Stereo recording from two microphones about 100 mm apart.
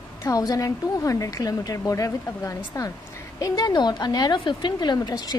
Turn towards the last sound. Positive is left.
turn(degrees=40)  # may be behind; listen again after turning